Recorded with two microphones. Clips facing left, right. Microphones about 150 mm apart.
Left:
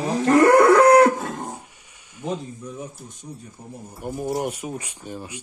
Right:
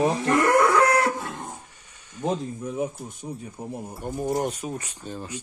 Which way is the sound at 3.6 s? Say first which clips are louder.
Right 9 dB; 75° right (ahead or behind).